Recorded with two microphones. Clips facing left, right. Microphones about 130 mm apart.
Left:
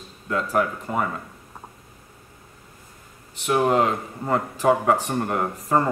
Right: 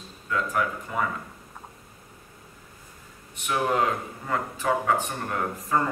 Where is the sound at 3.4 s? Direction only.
30° left (ahead or behind).